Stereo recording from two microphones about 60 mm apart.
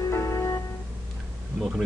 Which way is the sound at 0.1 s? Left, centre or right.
Left.